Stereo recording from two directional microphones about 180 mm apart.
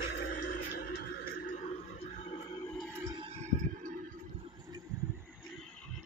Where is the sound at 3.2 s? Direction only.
35° right (ahead or behind).